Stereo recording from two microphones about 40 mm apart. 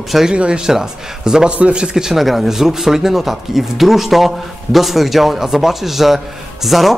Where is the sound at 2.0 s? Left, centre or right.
Centre.